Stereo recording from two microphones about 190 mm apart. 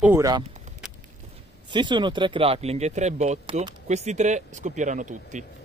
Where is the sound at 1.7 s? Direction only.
25° right (ahead or behind).